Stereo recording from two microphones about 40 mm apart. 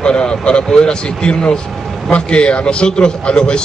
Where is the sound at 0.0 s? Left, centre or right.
Left.